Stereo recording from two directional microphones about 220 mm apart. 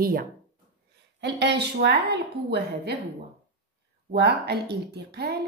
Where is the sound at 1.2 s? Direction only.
50° right (ahead or behind).